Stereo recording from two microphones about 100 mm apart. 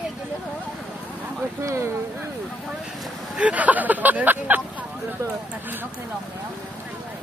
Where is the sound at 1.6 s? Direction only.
30° right (ahead or behind).